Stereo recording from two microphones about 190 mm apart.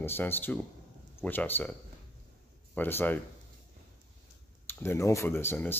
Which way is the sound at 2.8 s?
10° left (ahead or behind).